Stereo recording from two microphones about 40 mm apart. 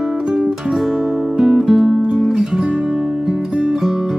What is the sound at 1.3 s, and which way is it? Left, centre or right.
Music, centre.